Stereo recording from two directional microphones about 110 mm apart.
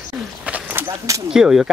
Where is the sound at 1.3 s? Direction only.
5° right (ahead or behind).